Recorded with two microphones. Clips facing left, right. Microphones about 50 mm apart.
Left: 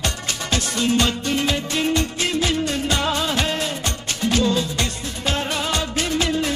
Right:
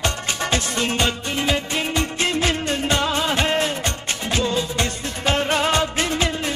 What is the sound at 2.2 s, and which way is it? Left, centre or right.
Music, right.